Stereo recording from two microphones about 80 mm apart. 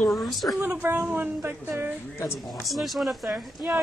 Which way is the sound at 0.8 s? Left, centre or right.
Right.